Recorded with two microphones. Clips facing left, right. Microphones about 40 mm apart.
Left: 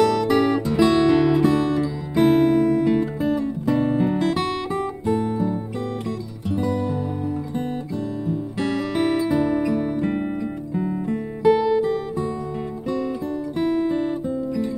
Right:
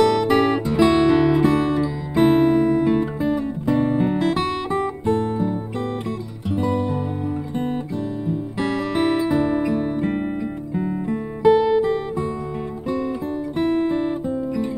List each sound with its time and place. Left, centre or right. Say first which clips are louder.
0.0 s music: right 1 dB; right
2.2 s guitar: right 1 dB; centre
3.7 s music: right 1 dB; right
8.5 s music: right 1 dB; right
13.6 s guitar: right 1 dB; right